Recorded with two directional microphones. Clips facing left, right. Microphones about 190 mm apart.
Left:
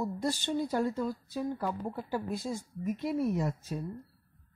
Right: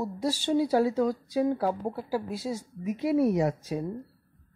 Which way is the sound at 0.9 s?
90° right.